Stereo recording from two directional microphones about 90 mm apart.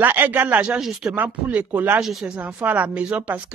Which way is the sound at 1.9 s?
10° right (ahead or behind).